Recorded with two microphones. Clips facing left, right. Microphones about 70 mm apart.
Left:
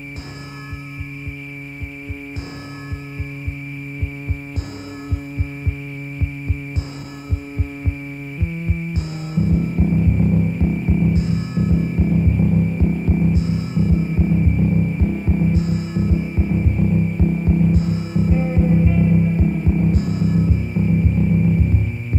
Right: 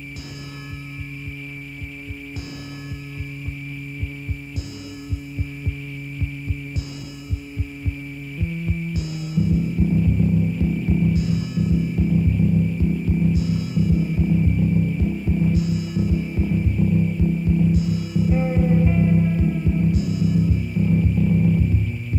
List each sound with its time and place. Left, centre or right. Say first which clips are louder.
8.4 s music: even; left
19.3 s hum: left 2 dB; left
21.1 s music: left 1 dB; left